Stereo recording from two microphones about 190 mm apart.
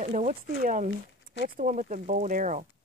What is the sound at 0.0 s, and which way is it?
Speech, 45° right (ahead or behind).